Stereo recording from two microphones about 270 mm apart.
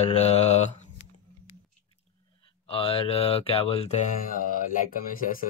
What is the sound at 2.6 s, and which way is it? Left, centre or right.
Speech, left.